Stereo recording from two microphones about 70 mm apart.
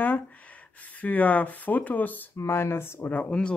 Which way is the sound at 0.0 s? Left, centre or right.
Left.